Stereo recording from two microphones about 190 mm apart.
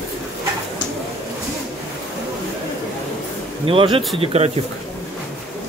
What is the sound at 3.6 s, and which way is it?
Speech, 30° right (ahead or behind).